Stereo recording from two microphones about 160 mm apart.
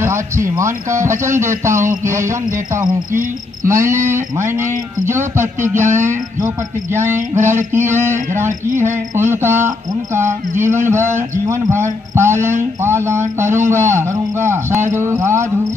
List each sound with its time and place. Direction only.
0.0 s speech: 15° right (ahead or behind)
3.6 s speech: 20° right (ahead or behind)
7.2 s a sound: 50° right (ahead or behind)
7.7 s speech: 15° right (ahead or behind)
8.5 s a sound: 50° right (ahead or behind)
9.3 s speech: 15° right (ahead or behind)